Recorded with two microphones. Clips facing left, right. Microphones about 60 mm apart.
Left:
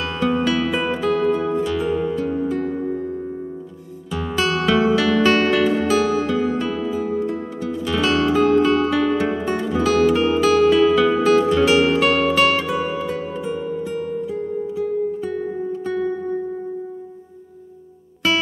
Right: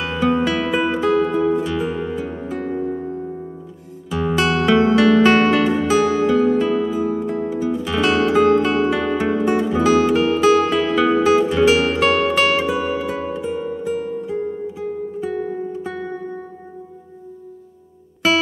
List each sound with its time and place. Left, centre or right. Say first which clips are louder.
0.0 s music: right 2 dB; centre